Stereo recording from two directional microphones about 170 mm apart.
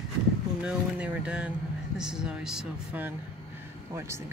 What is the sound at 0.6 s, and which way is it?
Speech, 5° right (ahead or behind).